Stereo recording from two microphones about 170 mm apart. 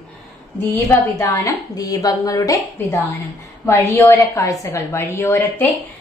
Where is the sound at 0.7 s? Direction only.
15° left (ahead or behind).